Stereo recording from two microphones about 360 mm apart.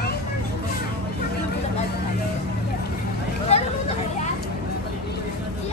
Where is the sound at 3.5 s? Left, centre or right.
Centre.